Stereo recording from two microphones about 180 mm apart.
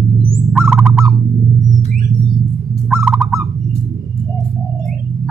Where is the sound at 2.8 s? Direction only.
5° right (ahead or behind).